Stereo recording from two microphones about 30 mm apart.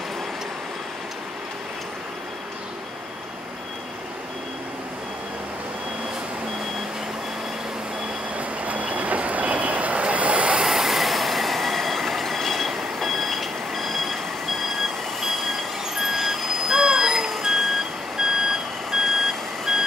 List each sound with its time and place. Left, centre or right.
8.4 s vehicle: right
10.6 s train: centre
16.0 s vehicle: centre
18.1 s reversing beeps: centre
19.0 s reversing beeps: centre